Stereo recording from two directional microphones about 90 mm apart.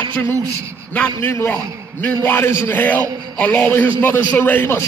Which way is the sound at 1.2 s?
30° left (ahead or behind).